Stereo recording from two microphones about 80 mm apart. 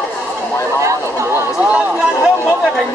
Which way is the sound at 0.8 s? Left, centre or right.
Right.